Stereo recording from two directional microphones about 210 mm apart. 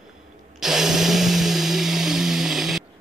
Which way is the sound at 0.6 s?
Centre (ahead or behind).